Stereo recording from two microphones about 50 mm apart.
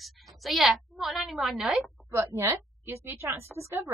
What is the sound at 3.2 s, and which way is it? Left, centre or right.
Speech, right.